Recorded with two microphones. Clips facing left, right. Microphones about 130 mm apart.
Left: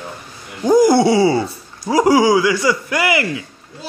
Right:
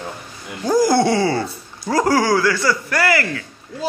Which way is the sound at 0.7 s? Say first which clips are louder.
Left 4 dB; 15° left (ahead or behind).